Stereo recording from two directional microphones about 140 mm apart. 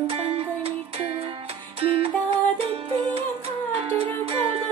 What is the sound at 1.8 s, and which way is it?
Music, 45° right (ahead or behind).